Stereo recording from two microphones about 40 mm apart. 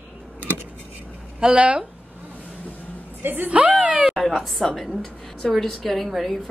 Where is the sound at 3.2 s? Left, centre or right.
Right.